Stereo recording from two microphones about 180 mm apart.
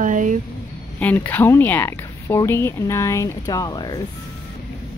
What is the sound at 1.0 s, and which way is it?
Speech, 10° left (ahead or behind).